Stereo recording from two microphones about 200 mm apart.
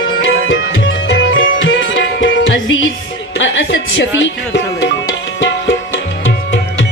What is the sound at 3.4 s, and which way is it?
Speech, 65° left (ahead or behind).